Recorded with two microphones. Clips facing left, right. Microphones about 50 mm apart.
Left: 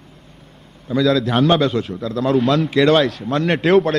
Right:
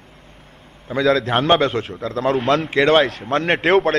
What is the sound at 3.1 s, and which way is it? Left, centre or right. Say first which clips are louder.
Speech: even; right.